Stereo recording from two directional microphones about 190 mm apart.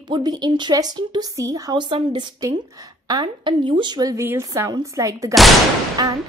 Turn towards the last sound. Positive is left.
turn(degrees=-20)  # may be behind; listen again after turning